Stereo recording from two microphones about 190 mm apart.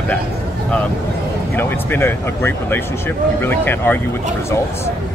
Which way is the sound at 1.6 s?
10° left (ahead or behind).